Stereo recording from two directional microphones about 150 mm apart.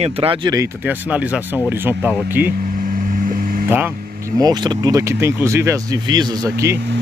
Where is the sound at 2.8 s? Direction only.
65° right (ahead or behind).